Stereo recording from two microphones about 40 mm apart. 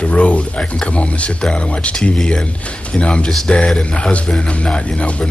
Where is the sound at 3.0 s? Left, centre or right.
Left.